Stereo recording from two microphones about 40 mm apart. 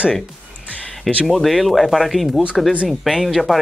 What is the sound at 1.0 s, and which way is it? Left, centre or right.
Speech, centre.